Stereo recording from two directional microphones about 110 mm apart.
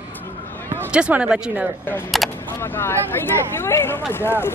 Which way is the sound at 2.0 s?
Centre (ahead or behind).